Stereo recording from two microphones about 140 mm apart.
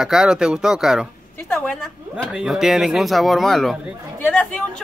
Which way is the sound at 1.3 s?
10° left (ahead or behind).